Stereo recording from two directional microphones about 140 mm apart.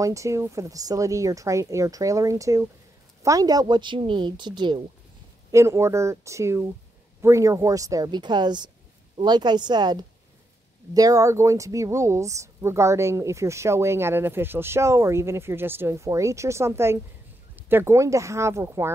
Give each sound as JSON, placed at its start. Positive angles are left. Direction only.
{"t": 0.0, "sound": "speech", "side_deg": -20}
{"t": 5.5, "sound": "speech", "side_deg": -20}